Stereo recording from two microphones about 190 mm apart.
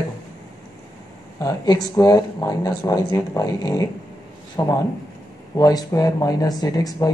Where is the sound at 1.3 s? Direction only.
20° left (ahead or behind).